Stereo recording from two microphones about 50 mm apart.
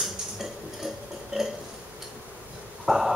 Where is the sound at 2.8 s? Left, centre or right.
Centre.